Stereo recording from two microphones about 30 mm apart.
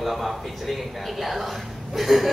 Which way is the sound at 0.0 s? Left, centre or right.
Centre.